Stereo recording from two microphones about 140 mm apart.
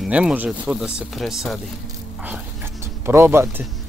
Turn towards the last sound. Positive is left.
turn(degrees=-15)  # may be behind; listen again after turning